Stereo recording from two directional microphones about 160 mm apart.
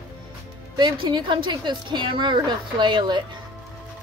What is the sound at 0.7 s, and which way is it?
Speech, 30° right (ahead or behind).